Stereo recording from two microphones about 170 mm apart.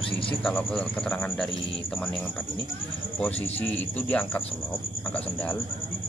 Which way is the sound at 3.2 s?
10° left (ahead or behind).